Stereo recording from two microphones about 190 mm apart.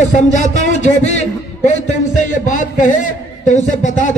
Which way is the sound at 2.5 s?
40° left (ahead or behind).